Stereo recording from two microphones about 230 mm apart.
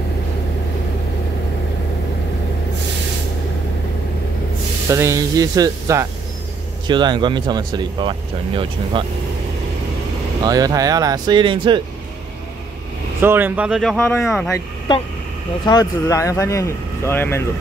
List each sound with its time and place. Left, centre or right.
4.8 s speech: centre
10.4 s speech: centre
13.2 s speech: centre
15.6 s speech: centre